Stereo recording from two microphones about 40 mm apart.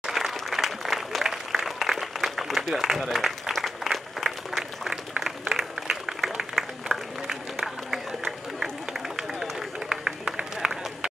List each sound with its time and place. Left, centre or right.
0.1 s applause: centre
6.6 s applause: centre
9.1 s run: centre